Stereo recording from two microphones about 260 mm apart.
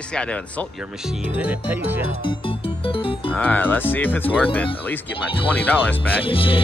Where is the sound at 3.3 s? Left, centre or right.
Centre.